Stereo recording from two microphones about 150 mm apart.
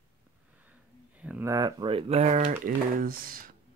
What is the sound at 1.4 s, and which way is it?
Speech, 25° right (ahead or behind).